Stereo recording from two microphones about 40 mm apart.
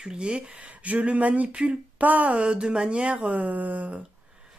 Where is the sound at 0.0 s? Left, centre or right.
Right.